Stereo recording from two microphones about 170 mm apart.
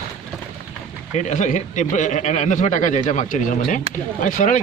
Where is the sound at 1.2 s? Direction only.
45° left (ahead or behind).